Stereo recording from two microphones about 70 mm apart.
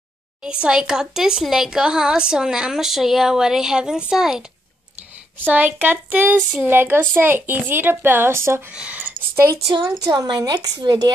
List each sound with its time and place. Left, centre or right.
0.4 s speech: centre
5.4 s a woman's voice: right
8.7 s speech: centre
9.3 s speech: right
9.7 s a woman's voice: right